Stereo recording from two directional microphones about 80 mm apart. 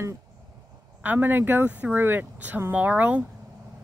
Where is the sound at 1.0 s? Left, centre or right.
Right.